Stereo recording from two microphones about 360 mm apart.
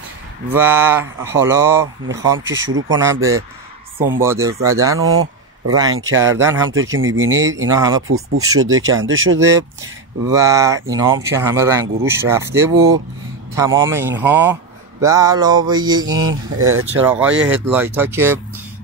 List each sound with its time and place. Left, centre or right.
0.5 s speech: centre
2.3 s speech: right
2.9 s speech: centre
5.0 s speech: right
5.7 s speech: centre
6.7 s speech: right
7.6 s speech: centre
8.1 s speech: right
10.3 s speech: centre